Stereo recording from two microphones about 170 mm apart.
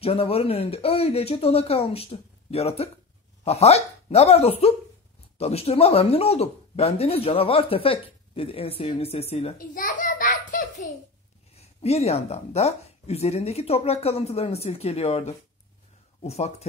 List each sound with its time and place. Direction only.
0.0 s speech: 35° left (ahead or behind)
9.6 s a sound: 50° left (ahead or behind)
11.5 s speech: 40° left (ahead or behind)